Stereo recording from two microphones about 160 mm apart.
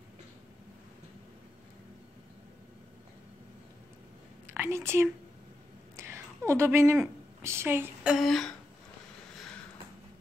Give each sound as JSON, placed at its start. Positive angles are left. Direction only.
{"t": 4.5, "sound": "a woman's voice", "side_deg": -15}